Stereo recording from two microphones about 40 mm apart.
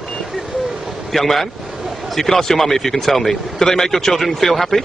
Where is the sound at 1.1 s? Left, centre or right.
Centre.